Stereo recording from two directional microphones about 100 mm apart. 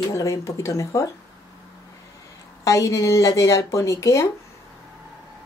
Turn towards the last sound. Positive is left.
turn(degrees=30)  # may be behind; listen again after turning